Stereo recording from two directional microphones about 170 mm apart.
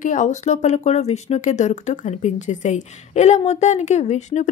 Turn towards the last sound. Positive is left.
turn(degrees=45)  # may be behind; listen again after turning